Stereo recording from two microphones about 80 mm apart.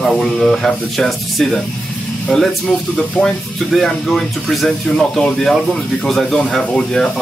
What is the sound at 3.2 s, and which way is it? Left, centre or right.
Speech, centre.